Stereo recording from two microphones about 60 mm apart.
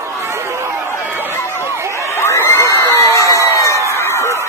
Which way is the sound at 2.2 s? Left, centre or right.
Left.